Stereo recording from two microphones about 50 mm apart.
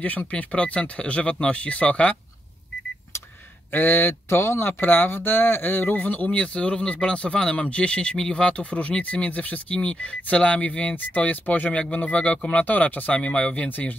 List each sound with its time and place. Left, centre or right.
0.3 s speech: left
3.7 s speech: left
4.3 s speech: left
6.4 s speech: left
13.7 s speech: left